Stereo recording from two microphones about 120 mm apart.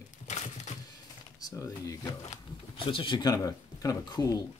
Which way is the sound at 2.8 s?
45° left (ahead or behind).